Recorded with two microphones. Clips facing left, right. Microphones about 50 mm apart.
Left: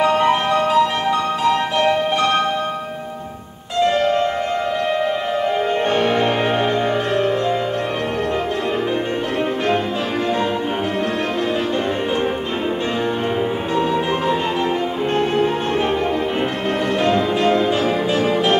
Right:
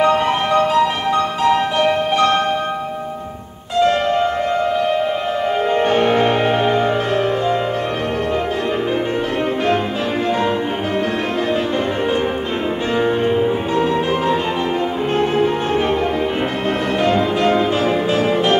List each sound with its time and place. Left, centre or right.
0.0 s music: centre
5.7 s music: centre
13.4 s music: centre
17.0 s music: centre